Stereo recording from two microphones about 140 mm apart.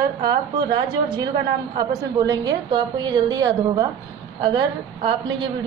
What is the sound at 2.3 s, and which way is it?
A woman's voice, 30° right (ahead or behind).